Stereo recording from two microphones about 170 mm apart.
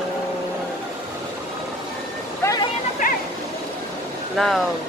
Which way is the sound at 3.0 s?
55° left (ahead or behind).